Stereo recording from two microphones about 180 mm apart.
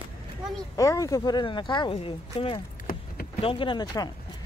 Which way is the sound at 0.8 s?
20° left (ahead or behind).